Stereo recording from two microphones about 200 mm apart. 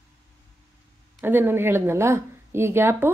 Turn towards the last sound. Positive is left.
turn(degrees=-10)  # may be behind; listen again after turning